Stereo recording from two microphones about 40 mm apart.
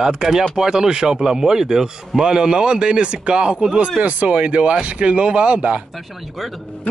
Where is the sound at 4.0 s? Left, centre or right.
Right.